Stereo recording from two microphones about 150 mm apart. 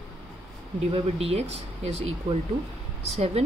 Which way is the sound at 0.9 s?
40° right (ahead or behind).